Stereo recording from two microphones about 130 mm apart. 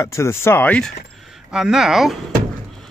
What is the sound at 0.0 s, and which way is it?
Speech, 20° left (ahead or behind).